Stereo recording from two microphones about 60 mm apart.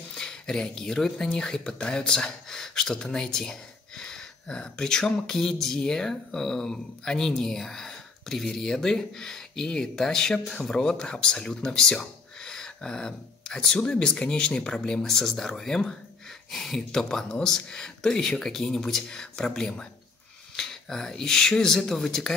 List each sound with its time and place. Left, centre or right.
0.1 s speech: centre